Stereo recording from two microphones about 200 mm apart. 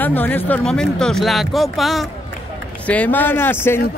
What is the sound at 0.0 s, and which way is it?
Speech, 10° left (ahead or behind).